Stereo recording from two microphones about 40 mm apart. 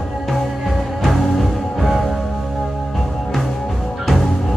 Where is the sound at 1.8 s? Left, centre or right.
Centre.